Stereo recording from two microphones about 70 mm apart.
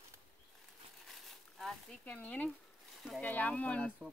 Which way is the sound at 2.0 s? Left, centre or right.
Left.